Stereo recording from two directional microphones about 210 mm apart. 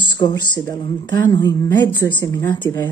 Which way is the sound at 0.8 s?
20° left (ahead or behind).